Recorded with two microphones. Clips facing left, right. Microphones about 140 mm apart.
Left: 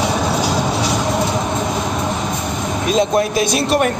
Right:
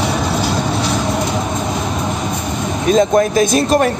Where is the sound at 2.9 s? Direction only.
45° right (ahead or behind).